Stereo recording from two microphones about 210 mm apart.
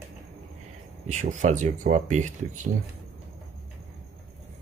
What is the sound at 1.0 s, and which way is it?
Speech, 35° right (ahead or behind).